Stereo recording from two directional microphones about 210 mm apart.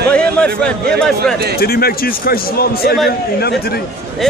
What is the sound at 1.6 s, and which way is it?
A man's voice, 45° left (ahead or behind).